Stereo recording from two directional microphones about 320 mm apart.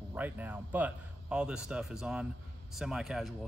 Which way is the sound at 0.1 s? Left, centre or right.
Centre.